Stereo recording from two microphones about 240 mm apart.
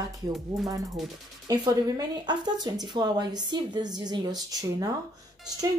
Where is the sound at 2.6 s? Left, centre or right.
Centre.